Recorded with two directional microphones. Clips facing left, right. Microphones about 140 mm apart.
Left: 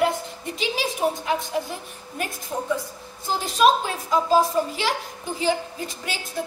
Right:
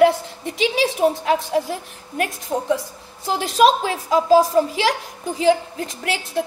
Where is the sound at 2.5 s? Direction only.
40° right (ahead or behind).